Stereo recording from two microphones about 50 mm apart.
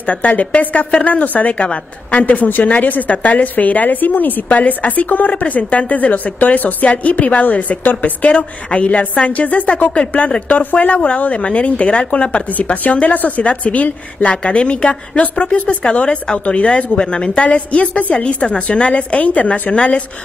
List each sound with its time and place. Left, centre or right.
0.0 s a woman's voice: left